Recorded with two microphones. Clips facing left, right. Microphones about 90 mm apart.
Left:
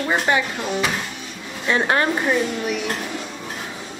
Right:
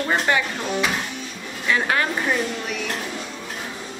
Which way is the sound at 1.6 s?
30° left (ahead or behind).